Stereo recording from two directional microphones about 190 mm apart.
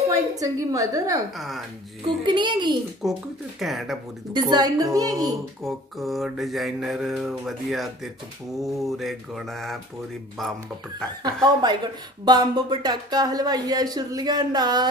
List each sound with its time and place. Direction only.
0.4 s speech: 20° right (ahead or behind)
2.2 s speech: 25° right (ahead or behind)
3.0 s mantra: centre (ahead or behind)
4.3 s speech: 20° right (ahead or behind)
5.6 s mantra: centre (ahead or behind)
11.4 s speech: 20° right (ahead or behind)